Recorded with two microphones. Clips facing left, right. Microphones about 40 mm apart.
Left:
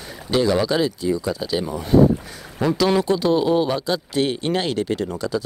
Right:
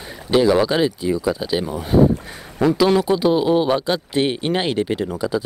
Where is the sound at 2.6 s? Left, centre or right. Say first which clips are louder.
Right 3 dB; centre.